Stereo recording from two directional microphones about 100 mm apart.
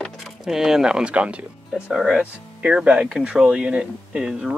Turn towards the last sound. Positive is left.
turn(degrees=-5)  # may be behind; listen again after turning